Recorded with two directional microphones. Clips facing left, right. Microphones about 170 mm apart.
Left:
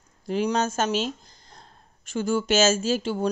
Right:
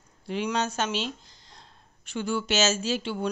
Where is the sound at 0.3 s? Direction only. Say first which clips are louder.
Left 4 dB; 40° left (ahead or behind).